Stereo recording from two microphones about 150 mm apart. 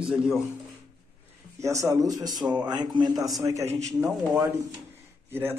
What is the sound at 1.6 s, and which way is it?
Speech, 20° right (ahead or behind).